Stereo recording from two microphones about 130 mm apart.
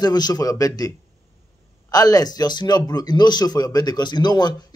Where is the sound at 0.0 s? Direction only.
30° left (ahead or behind).